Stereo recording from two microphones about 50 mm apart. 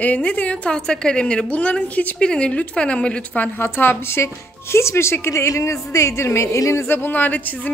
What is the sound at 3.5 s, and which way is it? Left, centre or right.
Speech, left.